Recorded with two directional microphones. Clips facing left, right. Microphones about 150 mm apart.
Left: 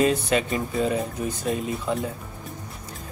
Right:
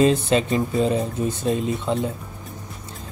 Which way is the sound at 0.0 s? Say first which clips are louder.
Right 4 dB; 30° right (ahead or behind).